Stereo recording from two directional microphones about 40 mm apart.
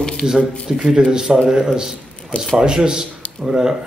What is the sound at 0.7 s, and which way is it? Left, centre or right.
A man's voice, centre.